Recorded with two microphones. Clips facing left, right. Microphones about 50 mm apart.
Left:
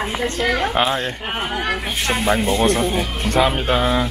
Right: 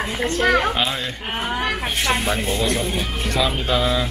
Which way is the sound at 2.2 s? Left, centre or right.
Left.